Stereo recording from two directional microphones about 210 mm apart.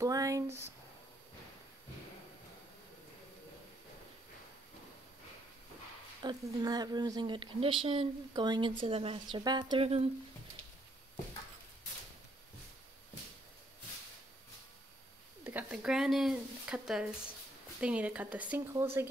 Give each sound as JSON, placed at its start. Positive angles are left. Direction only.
{"t": 0.0, "sound": "speech", "side_deg": -15}
{"t": 6.2, "sound": "speech", "side_deg": -20}
{"t": 15.4, "sound": "speech", "side_deg": -5}